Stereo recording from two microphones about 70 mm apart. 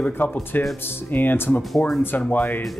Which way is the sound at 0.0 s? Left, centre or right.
Left.